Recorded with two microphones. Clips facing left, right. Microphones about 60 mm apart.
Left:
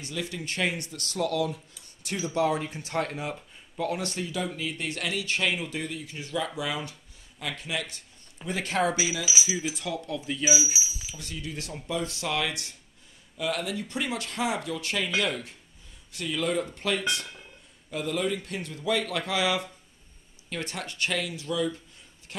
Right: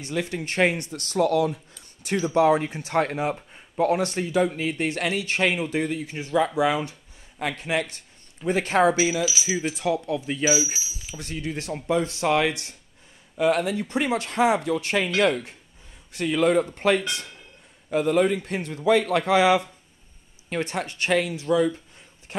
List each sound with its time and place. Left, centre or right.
0.0 s speech: right
9.8 s speech: right
10.8 s speech: centre
11.1 s speech: right
16.1 s speech: right